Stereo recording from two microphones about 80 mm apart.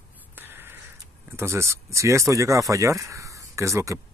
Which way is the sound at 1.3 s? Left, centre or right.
Right.